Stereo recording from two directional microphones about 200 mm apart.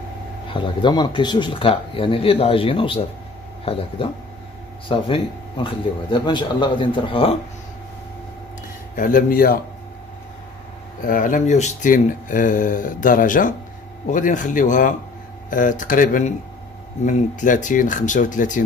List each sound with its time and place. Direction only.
0.5 s speech: 25° left (ahead or behind)
4.8 s speech: 25° left (ahead or behind)
8.9 s speech: 40° left (ahead or behind)
11.1 s speech: 40° left (ahead or behind)